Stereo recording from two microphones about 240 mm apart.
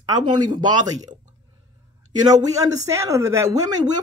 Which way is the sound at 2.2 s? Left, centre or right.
Centre.